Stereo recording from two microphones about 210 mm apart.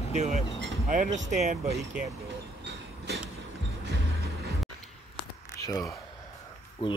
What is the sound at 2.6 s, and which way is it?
Vehicle, 55° right (ahead or behind).